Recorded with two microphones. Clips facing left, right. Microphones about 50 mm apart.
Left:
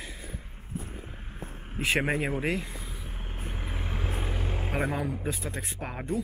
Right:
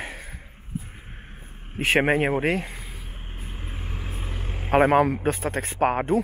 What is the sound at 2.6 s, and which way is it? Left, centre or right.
Vehicle, right.